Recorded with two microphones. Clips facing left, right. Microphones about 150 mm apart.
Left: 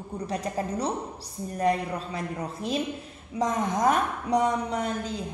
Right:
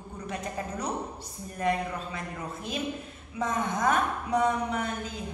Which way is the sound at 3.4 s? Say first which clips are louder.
Left 3 dB; 35° left (ahead or behind).